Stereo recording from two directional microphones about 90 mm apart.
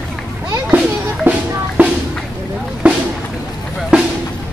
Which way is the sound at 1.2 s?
20° right (ahead or behind).